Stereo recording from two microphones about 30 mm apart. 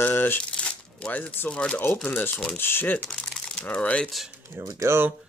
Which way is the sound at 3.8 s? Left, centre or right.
Left.